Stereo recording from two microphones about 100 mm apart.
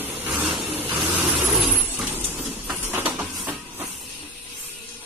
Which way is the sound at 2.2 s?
20° right (ahead or behind).